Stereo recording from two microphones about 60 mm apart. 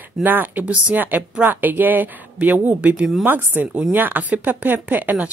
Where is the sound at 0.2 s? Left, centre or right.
Right.